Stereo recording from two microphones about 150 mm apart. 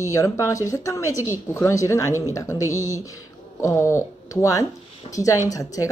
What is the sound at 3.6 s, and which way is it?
Speech, 20° left (ahead or behind).